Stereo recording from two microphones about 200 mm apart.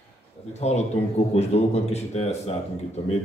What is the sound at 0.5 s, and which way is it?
A man's voice, 35° left (ahead or behind).